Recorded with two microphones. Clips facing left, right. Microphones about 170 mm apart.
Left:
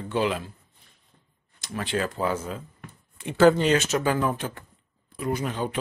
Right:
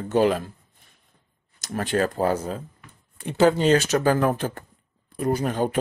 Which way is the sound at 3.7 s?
35° right (ahead or behind).